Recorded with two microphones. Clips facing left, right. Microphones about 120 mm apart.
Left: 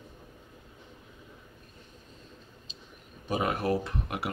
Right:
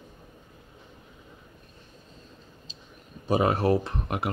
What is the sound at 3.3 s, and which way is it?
Speech, 30° right (ahead or behind).